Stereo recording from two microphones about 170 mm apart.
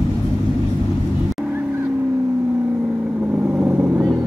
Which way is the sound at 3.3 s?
10° right (ahead or behind).